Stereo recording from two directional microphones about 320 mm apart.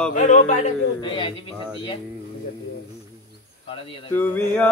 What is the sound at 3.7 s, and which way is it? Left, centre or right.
Speech, centre.